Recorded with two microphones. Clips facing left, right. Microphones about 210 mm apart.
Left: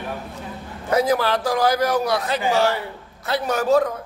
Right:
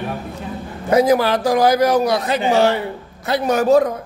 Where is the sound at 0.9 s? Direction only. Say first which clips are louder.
Right 5 dB; 15° right (ahead or behind).